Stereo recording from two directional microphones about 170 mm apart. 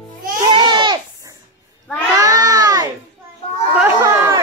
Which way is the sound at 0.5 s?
25° right (ahead or behind).